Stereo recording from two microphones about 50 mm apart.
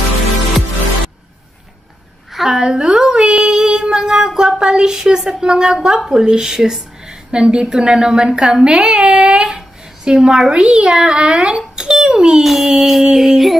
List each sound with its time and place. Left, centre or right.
2.3 s a child's voice: centre